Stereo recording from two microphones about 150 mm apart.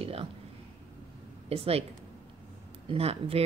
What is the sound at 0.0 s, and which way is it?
Speech, 40° right (ahead or behind).